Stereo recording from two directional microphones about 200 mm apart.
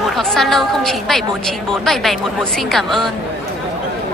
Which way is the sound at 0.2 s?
Centre (ahead or behind).